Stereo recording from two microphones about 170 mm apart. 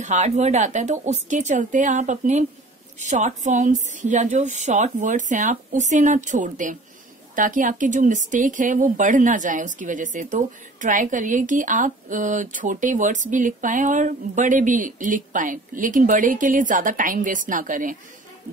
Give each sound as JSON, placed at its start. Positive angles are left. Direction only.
{"t": 0.0, "sound": "speech", "side_deg": -45}